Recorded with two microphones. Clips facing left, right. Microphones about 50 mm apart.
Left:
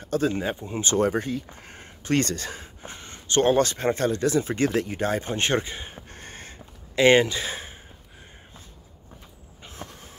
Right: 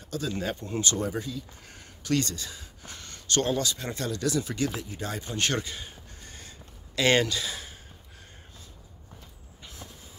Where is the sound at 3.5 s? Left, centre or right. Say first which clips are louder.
Left 8 dB; left.